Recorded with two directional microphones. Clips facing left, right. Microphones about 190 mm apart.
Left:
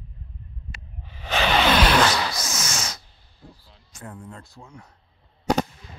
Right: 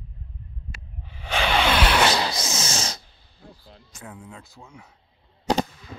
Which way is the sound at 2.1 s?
25° right (ahead or behind).